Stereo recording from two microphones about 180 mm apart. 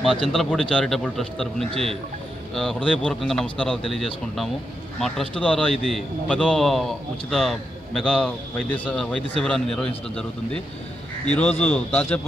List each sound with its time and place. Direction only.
0.0 s a man's voice: centre (ahead or behind)
11.6 s a man's voice: 10° left (ahead or behind)